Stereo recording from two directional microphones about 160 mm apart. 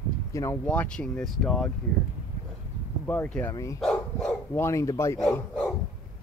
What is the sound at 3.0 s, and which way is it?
Speech, 10° left (ahead or behind).